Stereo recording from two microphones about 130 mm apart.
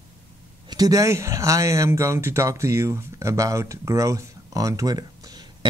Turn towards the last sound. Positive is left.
turn(degrees=-30)  # may be behind; listen again after turning